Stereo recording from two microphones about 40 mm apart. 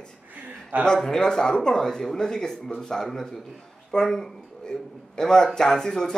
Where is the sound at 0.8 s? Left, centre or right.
Centre.